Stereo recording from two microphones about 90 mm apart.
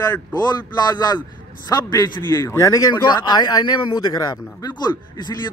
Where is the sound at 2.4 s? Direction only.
35° left (ahead or behind).